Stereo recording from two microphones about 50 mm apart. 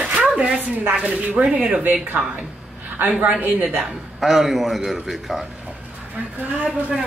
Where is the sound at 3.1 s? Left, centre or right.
Right.